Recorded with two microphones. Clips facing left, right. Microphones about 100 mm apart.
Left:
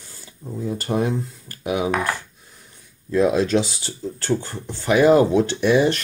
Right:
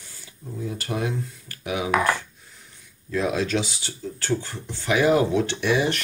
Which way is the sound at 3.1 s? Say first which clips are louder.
Left 6 dB; 35° left (ahead or behind).